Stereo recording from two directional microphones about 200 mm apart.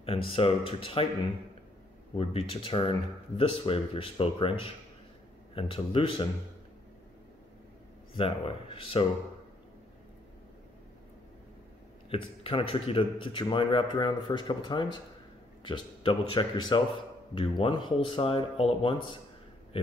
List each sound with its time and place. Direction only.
0.0 s speech: 30° left (ahead or behind)
2.1 s speech: 30° left (ahead or behind)
8.1 s speech: 25° left (ahead or behind)
12.1 s speech: 25° left (ahead or behind)